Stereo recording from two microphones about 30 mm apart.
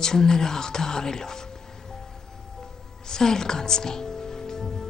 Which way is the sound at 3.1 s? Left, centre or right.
Centre.